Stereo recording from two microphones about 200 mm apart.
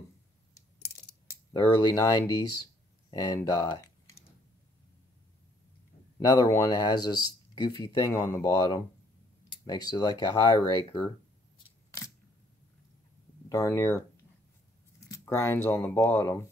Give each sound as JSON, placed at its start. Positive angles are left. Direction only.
{"t": 1.8, "sound": "speech", "side_deg": 20}
{"t": 6.1, "sound": "speech", "side_deg": 15}
{"t": 11.5, "sound": "a sound", "side_deg": 20}
{"t": 13.5, "sound": "speech", "side_deg": 15}
{"t": 15.0, "sound": "speech", "side_deg": 15}